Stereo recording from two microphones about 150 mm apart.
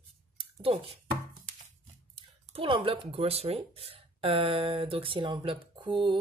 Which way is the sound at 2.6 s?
35° right (ahead or behind).